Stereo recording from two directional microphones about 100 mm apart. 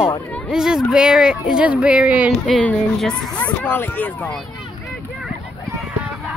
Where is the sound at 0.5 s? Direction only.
5° right (ahead or behind).